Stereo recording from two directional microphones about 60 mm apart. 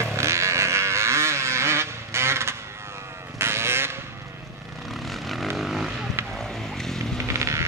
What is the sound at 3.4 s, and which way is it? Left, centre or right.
Vehicle, right.